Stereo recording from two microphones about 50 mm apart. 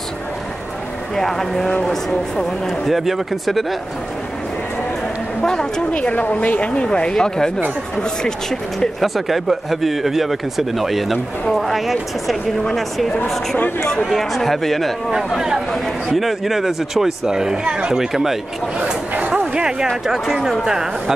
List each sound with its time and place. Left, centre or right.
1.1 s speech: centre
5.4 s speech: centre
5.9 s speech: left; by 8.8 s centre
9.0 s speech: centre
13.7 s speech: centre
14.0 s speech: centre
15.3 s speech: centre
19.1 s a sound: right
19.5 s speech: centre